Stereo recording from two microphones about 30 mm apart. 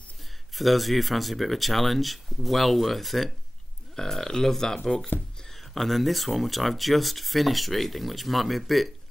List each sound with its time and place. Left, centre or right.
0.6 s speech: centre
3.9 s speech: centre
5.8 s speech: centre